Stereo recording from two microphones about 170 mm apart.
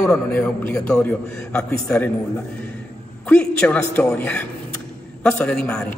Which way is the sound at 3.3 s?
5° left (ahead or behind).